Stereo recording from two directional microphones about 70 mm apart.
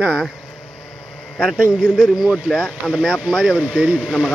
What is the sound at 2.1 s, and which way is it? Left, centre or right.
Speech, centre.